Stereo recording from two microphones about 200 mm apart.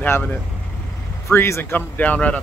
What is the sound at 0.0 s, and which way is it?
Speech, 10° left (ahead or behind).